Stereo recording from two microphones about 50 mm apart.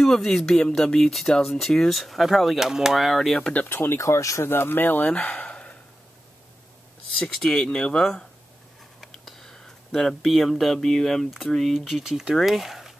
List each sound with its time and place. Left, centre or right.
0.0 s speech: centre
3.6 s speech: left
4.0 s speech: left
4.5 s speech: left
5.2 s a sound: left
7.3 s speech: centre
9.0 s a sound: centre
11.2 s speech: centre
12.4 s speech: centre